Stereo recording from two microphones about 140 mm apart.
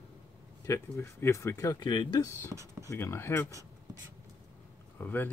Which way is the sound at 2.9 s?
15° left (ahead or behind).